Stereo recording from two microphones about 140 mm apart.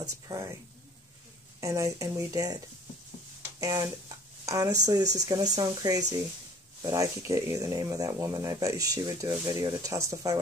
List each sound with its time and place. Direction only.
0.0 s speech: 20° right (ahead or behind)
1.6 s speech: 25° right (ahead or behind)